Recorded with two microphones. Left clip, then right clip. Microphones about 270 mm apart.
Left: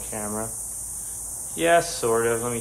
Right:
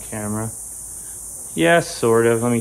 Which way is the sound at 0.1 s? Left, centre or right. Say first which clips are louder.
Right 3 dB; right.